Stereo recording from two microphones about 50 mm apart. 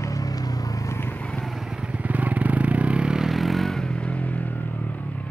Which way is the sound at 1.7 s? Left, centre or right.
Centre.